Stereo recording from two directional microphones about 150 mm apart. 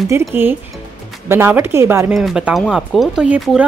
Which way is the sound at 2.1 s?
5° right (ahead or behind).